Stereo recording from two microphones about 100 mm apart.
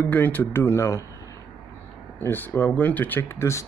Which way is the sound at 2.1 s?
20° left (ahead or behind).